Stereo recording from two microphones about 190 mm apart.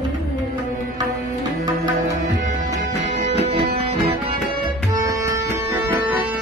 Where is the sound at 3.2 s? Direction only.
35° right (ahead or behind).